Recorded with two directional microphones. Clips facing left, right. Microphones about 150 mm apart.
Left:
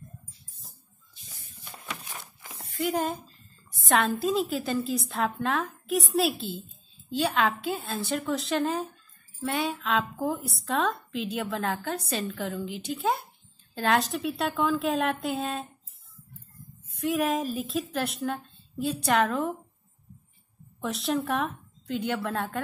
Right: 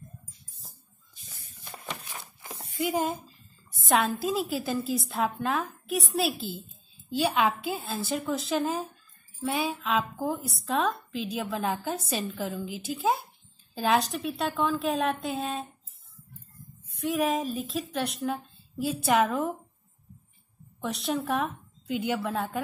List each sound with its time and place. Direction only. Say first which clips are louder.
1.1 s spray: left 1 dB; 50° right (ahead or behind)
2.6 s a woman's voice: even; centre (ahead or behind)
16.9 s a woman's voice: even; centre (ahead or behind)
20.8 s a woman's voice: left 1 dB; centre (ahead or behind)